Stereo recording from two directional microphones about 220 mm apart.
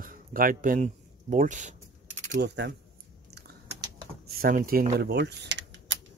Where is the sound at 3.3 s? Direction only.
50° right (ahead or behind).